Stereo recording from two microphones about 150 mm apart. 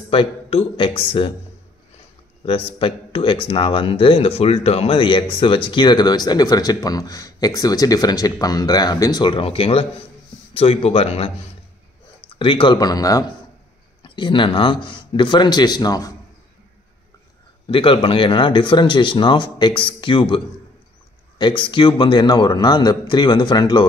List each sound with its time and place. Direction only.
0.1 s speech: 40° left (ahead or behind)
2.4 s speech: 40° left (ahead or behind)
12.7 s speech: 25° left (ahead or behind)
17.6 s speech: 35° left (ahead or behind)